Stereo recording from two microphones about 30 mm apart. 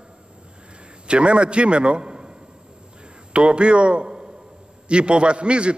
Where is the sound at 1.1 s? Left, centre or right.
Right.